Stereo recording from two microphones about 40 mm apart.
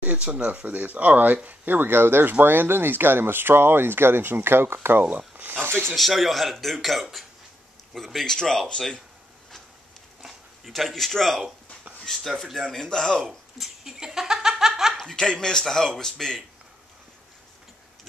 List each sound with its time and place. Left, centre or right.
0.0 s speech: right
0.5 s speech: right
1.8 s speech: right
5.1 s a sound: right
5.9 s speech: centre
10.2 s speech: centre
13.3 s a sound: centre
14.6 s snicker: centre
15.0 s a man's voice: left